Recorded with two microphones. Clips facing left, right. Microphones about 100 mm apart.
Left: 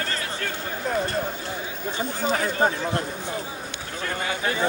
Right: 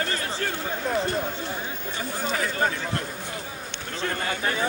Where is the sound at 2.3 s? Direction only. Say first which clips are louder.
Left 3 dB; 25° left (ahead or behind).